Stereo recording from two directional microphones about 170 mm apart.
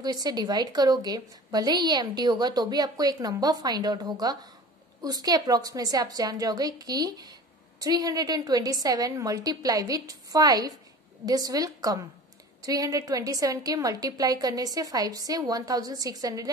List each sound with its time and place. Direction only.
0.0 s a woman's voice: 25° right (ahead or behind)